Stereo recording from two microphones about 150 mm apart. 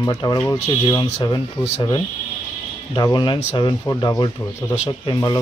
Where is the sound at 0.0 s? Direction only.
25° left (ahead or behind).